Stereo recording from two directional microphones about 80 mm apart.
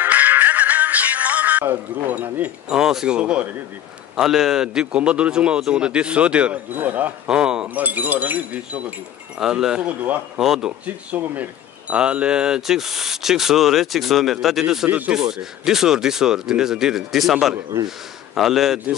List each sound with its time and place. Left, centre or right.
0.0 s music: right
2.7 s a man's voice: centre
7.2 s speech: centre
9.4 s a man's voice: centre
10.4 s speech: centre
10.9 s speech: right; by 14.9 s centre
14.9 s a man's voice: centre
15.1 s a man's voice: centre